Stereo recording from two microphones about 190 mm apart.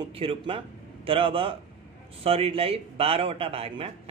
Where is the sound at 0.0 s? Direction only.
30° right (ahead or behind).